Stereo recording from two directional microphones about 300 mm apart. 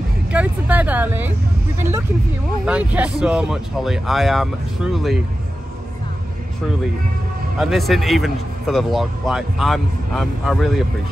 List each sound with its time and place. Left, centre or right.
0.3 s speech: centre
7.5 s speech: centre